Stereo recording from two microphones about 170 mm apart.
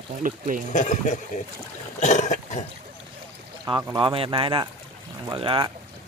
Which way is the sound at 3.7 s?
30° right (ahead or behind).